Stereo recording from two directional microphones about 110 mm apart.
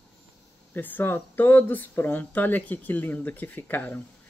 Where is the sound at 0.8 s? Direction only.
15° left (ahead or behind).